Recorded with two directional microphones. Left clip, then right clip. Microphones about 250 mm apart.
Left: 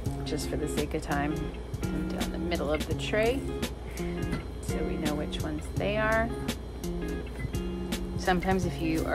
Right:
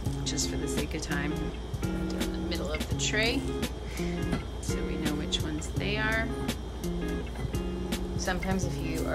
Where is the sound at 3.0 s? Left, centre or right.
Centre.